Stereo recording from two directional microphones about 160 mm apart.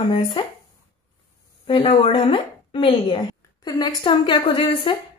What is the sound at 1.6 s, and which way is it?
A woman's voice, 35° left (ahead or behind).